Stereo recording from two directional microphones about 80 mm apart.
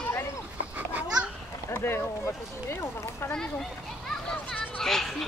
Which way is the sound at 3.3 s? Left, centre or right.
Centre.